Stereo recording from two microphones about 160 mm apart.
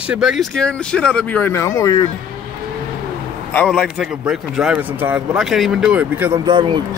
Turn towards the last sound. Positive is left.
turn(degrees=-30)  # may be behind; listen again after turning